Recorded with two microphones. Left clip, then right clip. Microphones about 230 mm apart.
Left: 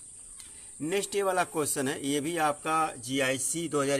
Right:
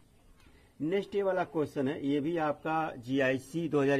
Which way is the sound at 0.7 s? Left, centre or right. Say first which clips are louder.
Left 2 dB; centre.